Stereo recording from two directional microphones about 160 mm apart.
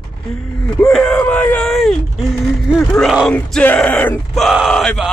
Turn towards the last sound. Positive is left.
turn(degrees=0)  # may be behind; listen again after turning